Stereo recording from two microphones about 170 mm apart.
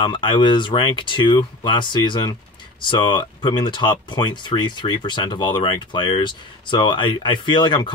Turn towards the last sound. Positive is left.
turn(degrees=25)  # may be behind; listen again after turning